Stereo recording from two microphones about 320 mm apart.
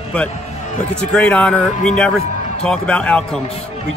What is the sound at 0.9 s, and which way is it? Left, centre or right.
Speech, centre.